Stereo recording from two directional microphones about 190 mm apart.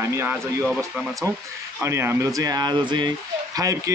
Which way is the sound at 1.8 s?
15° right (ahead or behind).